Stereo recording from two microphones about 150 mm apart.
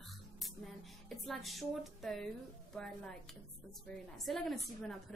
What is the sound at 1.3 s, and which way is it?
Speech, centre (ahead or behind).